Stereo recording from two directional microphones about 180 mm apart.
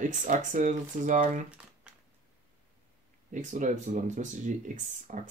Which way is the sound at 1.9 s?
5° right (ahead or behind).